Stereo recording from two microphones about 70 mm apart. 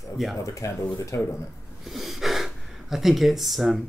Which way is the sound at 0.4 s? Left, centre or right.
Left.